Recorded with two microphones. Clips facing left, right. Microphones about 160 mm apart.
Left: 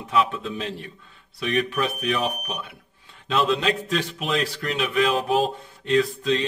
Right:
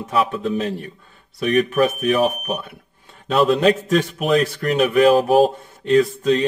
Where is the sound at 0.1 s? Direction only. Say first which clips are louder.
Right 3 dB; 45° right (ahead or behind).